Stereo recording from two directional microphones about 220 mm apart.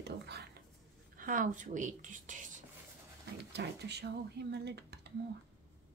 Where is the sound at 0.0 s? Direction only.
50° right (ahead or behind).